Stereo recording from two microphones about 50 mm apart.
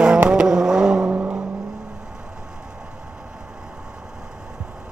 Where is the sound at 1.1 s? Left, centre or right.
Right.